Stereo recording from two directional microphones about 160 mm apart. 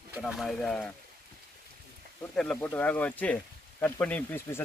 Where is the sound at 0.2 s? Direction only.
Centre (ahead or behind).